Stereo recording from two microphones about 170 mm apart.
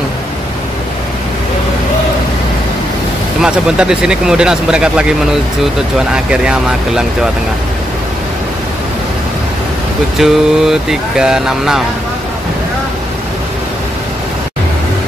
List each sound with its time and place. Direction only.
3.3 s speech: 5° right (ahead or behind)
10.1 s speech: centre (ahead or behind)